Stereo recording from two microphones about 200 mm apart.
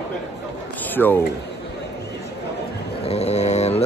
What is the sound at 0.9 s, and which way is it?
Speech, 10° left (ahead or behind).